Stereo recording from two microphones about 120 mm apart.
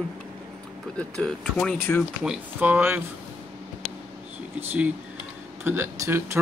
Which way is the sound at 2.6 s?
15° right (ahead or behind).